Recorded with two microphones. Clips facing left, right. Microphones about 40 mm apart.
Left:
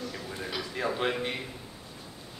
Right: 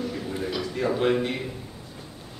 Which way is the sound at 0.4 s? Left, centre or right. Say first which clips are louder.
Right 4 dB; centre.